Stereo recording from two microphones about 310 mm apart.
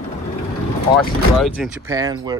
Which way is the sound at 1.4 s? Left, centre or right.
Centre.